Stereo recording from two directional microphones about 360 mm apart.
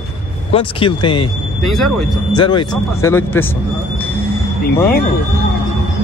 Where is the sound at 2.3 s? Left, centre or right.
Centre.